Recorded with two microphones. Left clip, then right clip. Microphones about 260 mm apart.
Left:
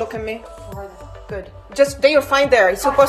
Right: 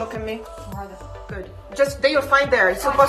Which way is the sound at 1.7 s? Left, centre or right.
Left.